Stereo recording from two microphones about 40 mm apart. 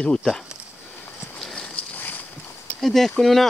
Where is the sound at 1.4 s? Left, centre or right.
Left.